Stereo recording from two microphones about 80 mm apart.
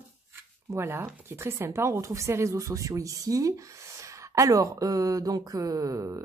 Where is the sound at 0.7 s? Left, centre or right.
Right.